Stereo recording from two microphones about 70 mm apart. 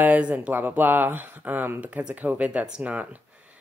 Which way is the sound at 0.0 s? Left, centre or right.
Right.